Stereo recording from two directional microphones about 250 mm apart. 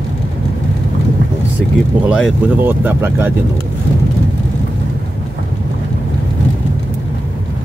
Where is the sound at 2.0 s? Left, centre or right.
Centre.